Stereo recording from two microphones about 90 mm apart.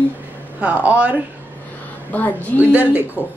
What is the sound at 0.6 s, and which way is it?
Speech, 15° right (ahead or behind).